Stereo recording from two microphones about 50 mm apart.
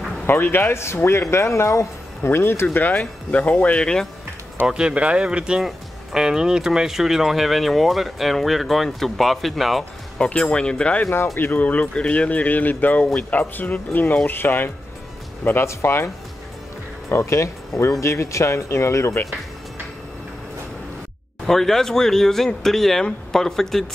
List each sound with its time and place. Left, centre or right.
0.3 s speech: left
2.2 s speech: left
2.7 s speech: left
3.8 s speech: centre
4.6 s speech: right
5.6 s speech: centre
10.1 s speech: centre
11.3 s speech: left
15.5 s speech: left
17.2 s speech: left
21.5 s speech: centre